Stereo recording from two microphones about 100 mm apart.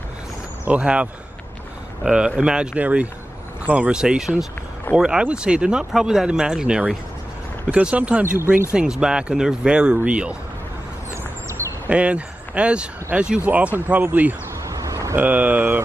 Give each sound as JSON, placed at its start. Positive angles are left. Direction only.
{"t": 0.7, "sound": "speech", "side_deg": -10}
{"t": 2.0, "sound": "speech", "side_deg": -10}
{"t": 11.9, "sound": "speech", "side_deg": -10}
{"t": 14.7, "sound": "a sound", "side_deg": -35}
{"t": 15.1, "sound": "speech", "side_deg": -15}